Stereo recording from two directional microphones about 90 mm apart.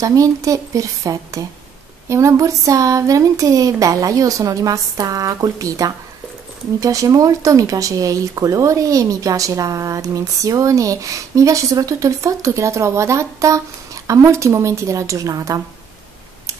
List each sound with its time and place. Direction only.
0.0 s speech: 40° right (ahead or behind)